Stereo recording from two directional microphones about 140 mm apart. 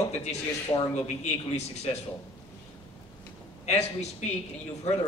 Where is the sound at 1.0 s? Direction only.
55° left (ahead or behind).